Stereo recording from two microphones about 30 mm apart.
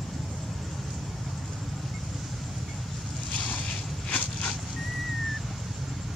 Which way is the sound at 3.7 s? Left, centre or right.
Left.